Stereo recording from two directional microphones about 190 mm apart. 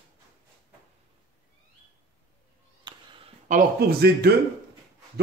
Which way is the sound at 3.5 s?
55° right (ahead or behind).